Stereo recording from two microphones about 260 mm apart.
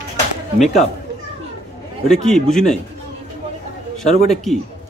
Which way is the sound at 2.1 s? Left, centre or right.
Centre.